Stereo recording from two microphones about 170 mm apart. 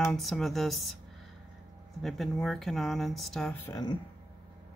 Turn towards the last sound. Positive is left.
turn(degrees=20)  # may be behind; listen again after turning